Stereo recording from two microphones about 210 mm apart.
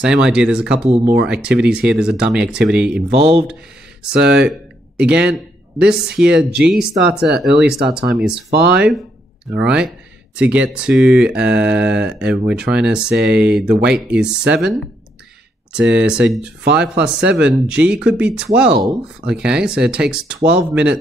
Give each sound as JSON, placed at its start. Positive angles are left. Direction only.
{"t": 0.0, "sound": "speech", "side_deg": -5}
{"t": 0.8, "sound": "speech", "side_deg": -30}
{"t": 1.2, "sound": "speech", "side_deg": -5}
{"t": 4.3, "sound": "speech", "side_deg": -5}